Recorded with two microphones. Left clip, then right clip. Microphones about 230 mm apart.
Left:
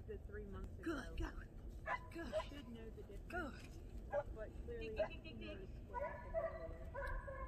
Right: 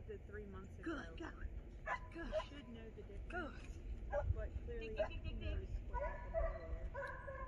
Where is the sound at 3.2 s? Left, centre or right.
Centre.